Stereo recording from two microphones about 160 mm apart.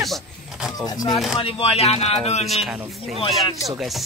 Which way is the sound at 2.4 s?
Centre (ahead or behind).